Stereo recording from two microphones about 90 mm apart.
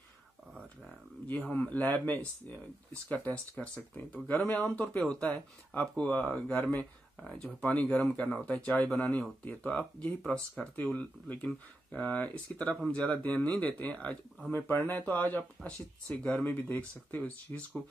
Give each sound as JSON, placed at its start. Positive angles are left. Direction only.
{"t": 1.2, "sound": "speech", "side_deg": 20}